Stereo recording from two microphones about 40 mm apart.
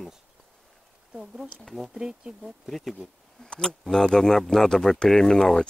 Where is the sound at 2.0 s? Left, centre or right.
Centre.